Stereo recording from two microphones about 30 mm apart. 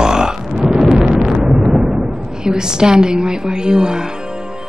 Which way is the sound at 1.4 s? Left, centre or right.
Right.